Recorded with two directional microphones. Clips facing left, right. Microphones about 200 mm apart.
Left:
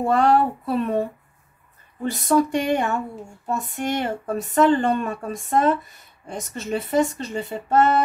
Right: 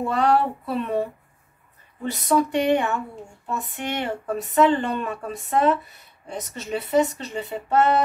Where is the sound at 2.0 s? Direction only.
45° left (ahead or behind).